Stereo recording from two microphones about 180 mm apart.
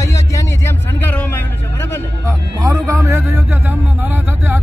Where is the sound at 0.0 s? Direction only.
15° left (ahead or behind).